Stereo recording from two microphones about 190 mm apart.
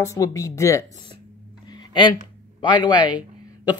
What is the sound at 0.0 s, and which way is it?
Speech, 15° left (ahead or behind).